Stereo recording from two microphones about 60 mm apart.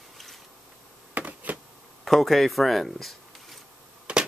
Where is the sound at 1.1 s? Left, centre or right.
Right.